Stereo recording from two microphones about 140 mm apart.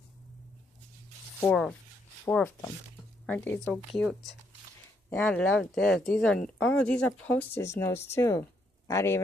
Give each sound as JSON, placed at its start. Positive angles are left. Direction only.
{"t": 1.4, "sound": "speech", "side_deg": 10}